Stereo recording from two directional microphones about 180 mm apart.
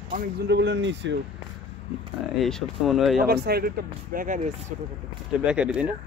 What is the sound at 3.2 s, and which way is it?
Speech, 60° right (ahead or behind).